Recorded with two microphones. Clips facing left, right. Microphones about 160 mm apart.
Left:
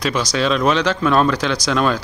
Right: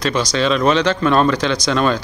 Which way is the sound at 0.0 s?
5° left (ahead or behind).